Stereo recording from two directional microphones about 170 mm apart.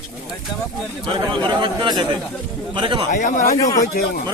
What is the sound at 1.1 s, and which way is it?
Speech, 30° right (ahead or behind).